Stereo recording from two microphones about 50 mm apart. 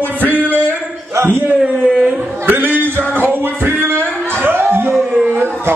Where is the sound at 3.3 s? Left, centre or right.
Right.